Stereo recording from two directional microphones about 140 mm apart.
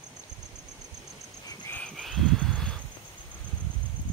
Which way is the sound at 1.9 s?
Centre (ahead or behind).